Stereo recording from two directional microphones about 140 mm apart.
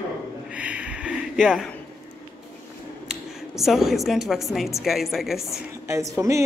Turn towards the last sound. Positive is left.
turn(degrees=-20)  # may be behind; listen again after turning